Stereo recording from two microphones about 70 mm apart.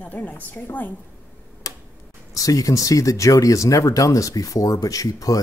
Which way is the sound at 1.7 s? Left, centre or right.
Left.